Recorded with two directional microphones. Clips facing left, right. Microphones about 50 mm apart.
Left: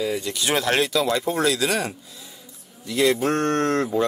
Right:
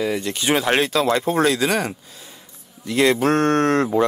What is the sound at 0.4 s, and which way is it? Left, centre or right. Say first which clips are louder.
Speech: right 3 dB; right.